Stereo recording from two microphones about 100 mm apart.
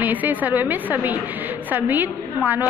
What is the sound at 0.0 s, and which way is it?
A woman's voice, 15° right (ahead or behind).